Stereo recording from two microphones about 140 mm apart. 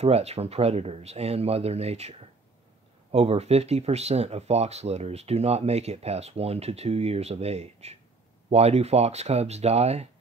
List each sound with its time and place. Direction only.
0.0 s speech: 50° right (ahead or behind)